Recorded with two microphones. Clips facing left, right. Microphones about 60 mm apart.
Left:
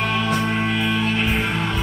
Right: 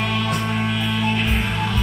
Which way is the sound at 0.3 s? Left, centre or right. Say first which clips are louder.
Left 2 dB; centre.